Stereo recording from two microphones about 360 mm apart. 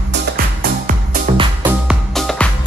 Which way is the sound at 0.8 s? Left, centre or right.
Right.